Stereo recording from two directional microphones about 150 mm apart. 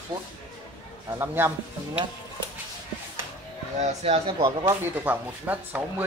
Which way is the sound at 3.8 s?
40° right (ahead or behind).